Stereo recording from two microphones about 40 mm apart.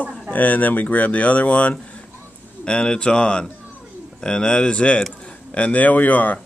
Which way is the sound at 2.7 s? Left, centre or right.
Left.